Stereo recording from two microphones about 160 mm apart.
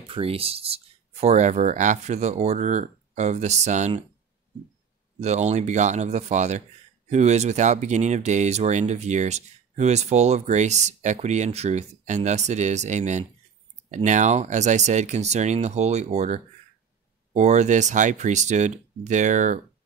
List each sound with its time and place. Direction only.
0.1 s speech: 35° right (ahead or behind)
5.2 s speech: 45° right (ahead or behind)